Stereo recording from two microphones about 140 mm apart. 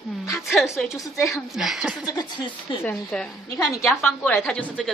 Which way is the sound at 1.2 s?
Centre (ahead or behind).